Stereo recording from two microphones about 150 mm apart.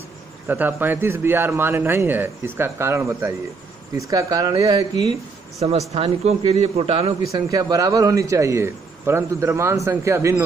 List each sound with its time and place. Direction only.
0.5 s a man's voice: 15° right (ahead or behind)
5.6 s a man's voice: 45° right (ahead or behind)
7.2 s a man's voice: 25° right (ahead or behind)